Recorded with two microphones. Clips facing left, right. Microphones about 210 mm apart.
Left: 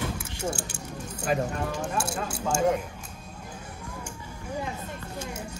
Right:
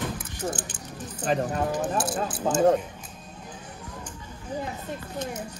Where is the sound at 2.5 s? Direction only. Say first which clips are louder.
Right 3 dB; 35° right (ahead or behind).